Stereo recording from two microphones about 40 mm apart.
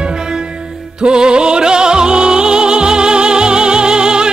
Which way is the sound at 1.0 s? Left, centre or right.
Right.